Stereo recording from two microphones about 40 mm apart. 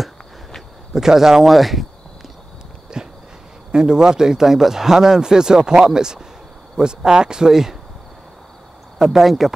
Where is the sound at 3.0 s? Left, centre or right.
Centre.